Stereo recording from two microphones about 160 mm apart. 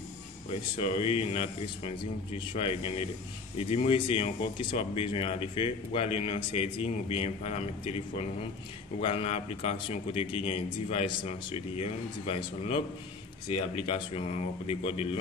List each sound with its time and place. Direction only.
0.5 s speech: 35° left (ahead or behind)
9.0 s speech: 40° left (ahead or behind)